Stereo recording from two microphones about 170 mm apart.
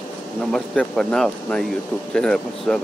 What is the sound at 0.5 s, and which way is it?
Speech, 5° left (ahead or behind).